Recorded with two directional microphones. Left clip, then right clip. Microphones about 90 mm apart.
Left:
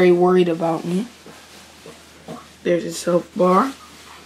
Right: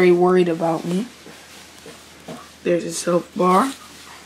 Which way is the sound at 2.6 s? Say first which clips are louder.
Even; 15° right (ahead or behind).